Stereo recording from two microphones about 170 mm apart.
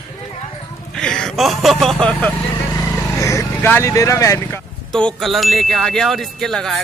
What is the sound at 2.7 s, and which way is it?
Vehicle, 20° left (ahead or behind).